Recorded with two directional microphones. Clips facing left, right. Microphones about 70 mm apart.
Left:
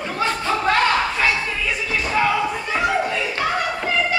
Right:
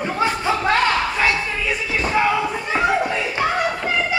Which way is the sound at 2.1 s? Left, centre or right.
Centre.